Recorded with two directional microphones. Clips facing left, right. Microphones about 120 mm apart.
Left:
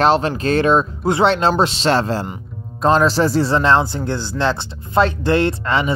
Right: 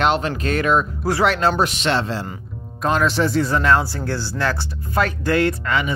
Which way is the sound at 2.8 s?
30° left (ahead or behind).